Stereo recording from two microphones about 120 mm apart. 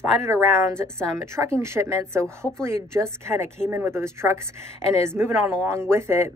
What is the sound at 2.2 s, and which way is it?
Speech, 5° left (ahead or behind).